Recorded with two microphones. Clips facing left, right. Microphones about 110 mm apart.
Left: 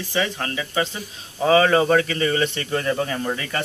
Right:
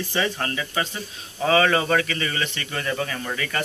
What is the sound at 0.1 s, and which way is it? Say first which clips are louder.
Speech: left 2 dB; 5° left (ahead or behind).